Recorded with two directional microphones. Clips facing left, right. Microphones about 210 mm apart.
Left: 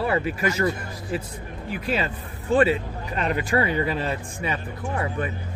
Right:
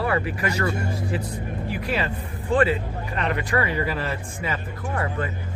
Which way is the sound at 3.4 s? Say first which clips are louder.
Left 3 dB; 25° left (ahead or behind).